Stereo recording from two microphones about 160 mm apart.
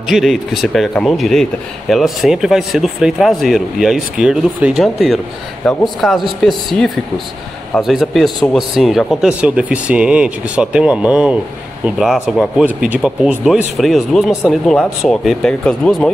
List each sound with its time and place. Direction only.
0.1 s a man's voice: centre (ahead or behind)